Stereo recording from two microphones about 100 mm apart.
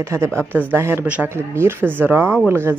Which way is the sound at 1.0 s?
15° right (ahead or behind).